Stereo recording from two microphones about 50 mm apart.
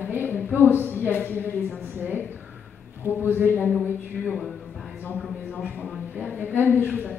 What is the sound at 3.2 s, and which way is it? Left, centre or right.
Speech, right.